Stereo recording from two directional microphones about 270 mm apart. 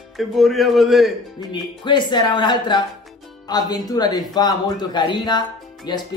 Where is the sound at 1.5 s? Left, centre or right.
Centre.